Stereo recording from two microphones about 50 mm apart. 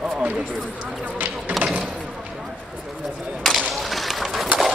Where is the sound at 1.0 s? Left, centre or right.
Right.